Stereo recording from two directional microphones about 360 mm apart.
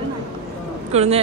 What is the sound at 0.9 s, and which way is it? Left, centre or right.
Speech, centre.